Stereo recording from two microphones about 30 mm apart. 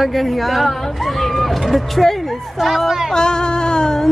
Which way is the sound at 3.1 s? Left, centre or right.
Left.